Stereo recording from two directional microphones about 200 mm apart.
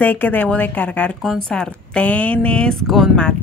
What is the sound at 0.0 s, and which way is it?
A woman's voice, 10° left (ahead or behind).